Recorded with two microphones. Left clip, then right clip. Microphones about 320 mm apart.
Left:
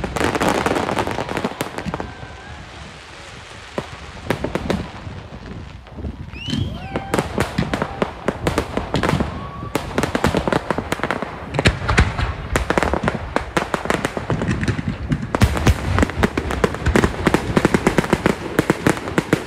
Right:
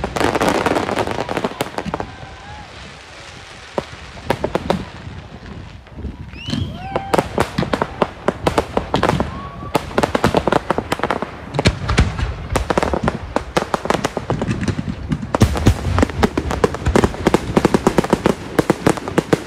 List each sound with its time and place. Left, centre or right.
0.1 s fireworks: centre
4.3 s fireworks: centre
6.9 s fireworks: centre
16.0 s a sound: centre